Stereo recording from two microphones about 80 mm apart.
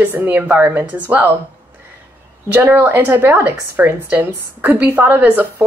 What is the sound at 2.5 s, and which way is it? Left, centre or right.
A woman's voice, right.